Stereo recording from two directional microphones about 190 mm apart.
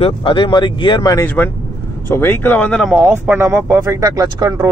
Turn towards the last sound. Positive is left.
turn(degrees=-20)  # may be behind; listen again after turning